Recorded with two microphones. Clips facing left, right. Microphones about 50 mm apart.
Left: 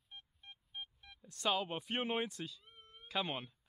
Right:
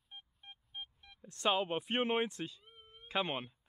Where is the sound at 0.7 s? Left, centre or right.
Centre.